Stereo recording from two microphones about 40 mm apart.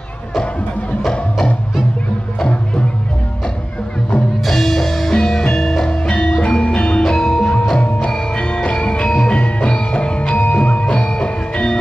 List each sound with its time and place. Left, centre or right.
4.5 s music: centre
5.9 s music: left
7.8 s music: left